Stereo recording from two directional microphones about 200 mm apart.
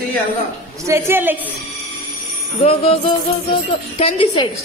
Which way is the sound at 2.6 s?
30° left (ahead or behind).